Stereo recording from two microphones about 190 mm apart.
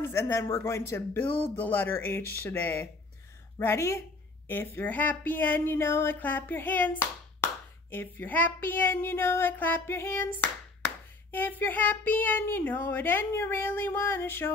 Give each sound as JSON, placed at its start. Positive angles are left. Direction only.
{"t": 0.0, "sound": "speech", "side_deg": 15}